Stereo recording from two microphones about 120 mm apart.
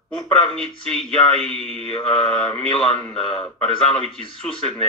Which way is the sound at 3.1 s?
50° left (ahead or behind).